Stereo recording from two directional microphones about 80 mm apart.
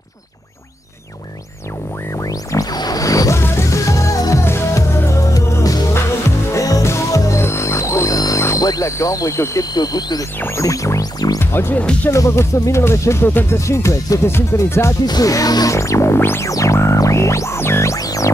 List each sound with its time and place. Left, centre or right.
2.1 s music: left
8.6 s a sound: left
8.9 s music: left
9.8 s speech: left
10.4 s music: left
11.3 s speech: left
12.1 s music: left
13.3 s speech: left
13.7 s music: left
14.2 s music: left
15.0 s music: left
16.4 s music: left
17.9 s music: left